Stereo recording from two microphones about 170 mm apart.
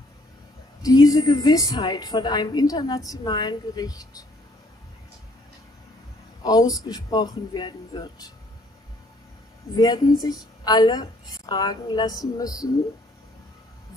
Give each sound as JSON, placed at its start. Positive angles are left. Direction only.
{"t": 0.8, "sound": "a woman's voice", "side_deg": 20}
{"t": 6.4, "sound": "a woman's voice", "side_deg": 20}
{"t": 9.8, "sound": "a woman's voice", "side_deg": 20}